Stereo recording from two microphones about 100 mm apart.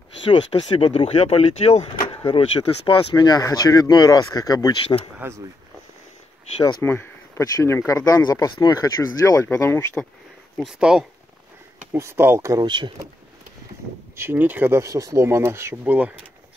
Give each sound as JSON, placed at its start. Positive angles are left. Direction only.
{"t": 0.3, "sound": "speech", "side_deg": 55}
{"t": 2.0, "sound": "a sound", "side_deg": 60}
{"t": 2.9, "sound": "speech", "side_deg": 45}
{"t": 5.2, "sound": "speech", "side_deg": -20}
{"t": 6.8, "sound": "speech", "side_deg": 25}
{"t": 10.6, "sound": "speech", "side_deg": -5}
{"t": 11.9, "sound": "speech", "side_deg": -25}
{"t": 12.6, "sound": "speech", "side_deg": -50}
{"t": 14.1, "sound": "speech", "side_deg": -20}
{"t": 14.8, "sound": "speech", "side_deg": -35}
{"t": 15.8, "sound": "speech", "side_deg": -15}